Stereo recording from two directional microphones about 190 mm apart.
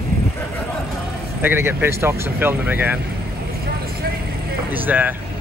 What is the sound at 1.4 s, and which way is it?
Speech, 10° right (ahead or behind).